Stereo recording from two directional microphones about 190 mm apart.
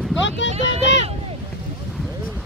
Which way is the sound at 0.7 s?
75° left (ahead or behind).